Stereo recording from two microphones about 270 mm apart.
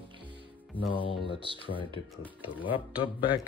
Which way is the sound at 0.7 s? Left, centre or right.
Centre.